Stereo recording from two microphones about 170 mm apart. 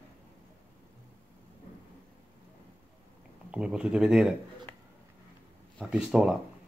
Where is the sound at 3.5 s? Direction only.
5° right (ahead or behind).